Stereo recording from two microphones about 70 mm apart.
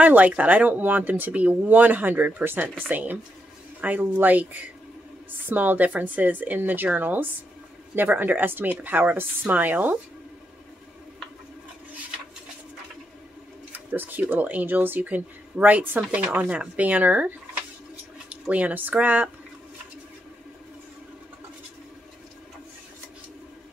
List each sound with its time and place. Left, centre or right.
0.0 s speech: right
13.7 s speech: right
16.0 s speech: centre
18.3 s speech: right